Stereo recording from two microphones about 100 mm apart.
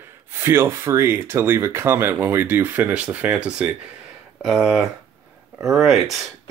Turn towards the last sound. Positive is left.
turn(degrees=0)  # may be behind; listen again after turning